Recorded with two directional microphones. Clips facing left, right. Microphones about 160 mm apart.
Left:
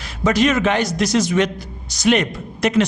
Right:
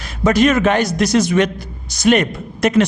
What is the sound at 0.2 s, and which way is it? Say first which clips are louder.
A man's voice: right 3 dB; 50° right (ahead or behind).